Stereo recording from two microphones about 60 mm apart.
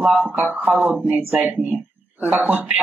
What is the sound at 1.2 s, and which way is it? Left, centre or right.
Speech, right.